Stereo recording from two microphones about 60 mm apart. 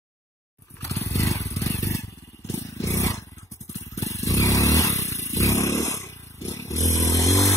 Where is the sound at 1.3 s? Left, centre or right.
Left.